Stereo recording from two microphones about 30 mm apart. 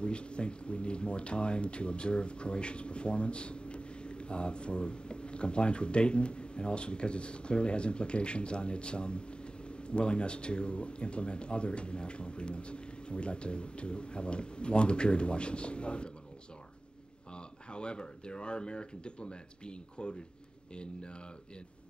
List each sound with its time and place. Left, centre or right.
0.0 s speech: left
17.4 s speech: left